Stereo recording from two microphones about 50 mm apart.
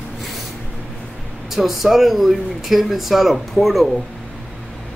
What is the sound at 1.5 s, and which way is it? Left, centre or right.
A man's voice, centre.